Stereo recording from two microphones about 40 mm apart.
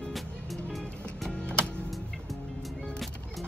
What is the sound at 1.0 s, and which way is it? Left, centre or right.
Music, left.